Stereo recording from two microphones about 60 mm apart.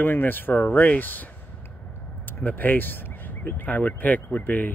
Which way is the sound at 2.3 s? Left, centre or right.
Left.